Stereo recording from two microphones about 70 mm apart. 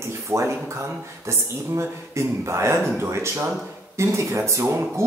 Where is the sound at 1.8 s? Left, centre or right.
Right.